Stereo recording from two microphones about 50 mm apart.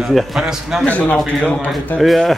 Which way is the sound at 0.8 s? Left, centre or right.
Left.